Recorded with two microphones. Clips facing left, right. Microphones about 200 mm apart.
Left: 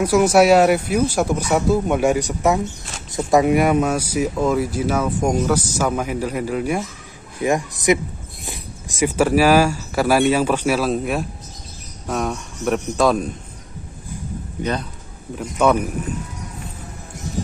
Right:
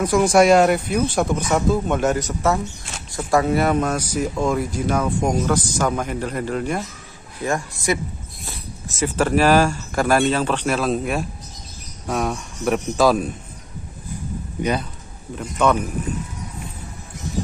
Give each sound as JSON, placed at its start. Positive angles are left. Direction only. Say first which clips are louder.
{"t": 0.0, "sound": "speech", "louder": "left 1 dB", "side_deg": 5}
{"t": 14.6, "sound": "speech", "louder": "right 1 dB", "side_deg": -10}
{"t": 15.3, "sound": "speech", "louder": "left 2 dB", "side_deg": 10}